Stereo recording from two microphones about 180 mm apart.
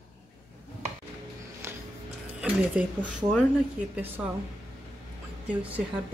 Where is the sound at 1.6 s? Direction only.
15° right (ahead or behind).